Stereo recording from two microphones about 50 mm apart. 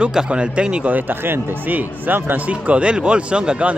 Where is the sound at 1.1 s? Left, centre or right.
Right.